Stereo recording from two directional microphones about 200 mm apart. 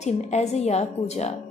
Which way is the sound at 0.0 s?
35° left (ahead or behind).